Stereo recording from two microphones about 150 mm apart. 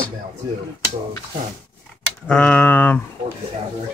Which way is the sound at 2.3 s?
10° left (ahead or behind).